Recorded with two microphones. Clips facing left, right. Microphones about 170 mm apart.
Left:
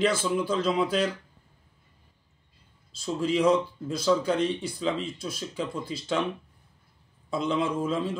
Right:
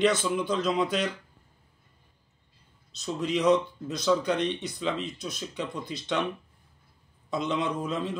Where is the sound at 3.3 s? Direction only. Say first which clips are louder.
Even; 30° left (ahead or behind).